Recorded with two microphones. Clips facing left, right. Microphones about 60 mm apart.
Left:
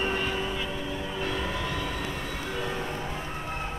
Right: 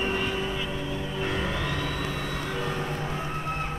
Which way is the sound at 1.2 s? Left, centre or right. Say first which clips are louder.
Right 2 dB; centre.